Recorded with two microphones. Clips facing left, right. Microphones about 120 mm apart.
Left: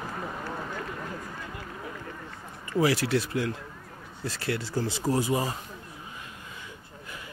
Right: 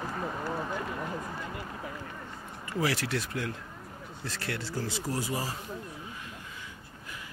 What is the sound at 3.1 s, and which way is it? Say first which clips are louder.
Speech: left 6 dB; 5° left (ahead or behind).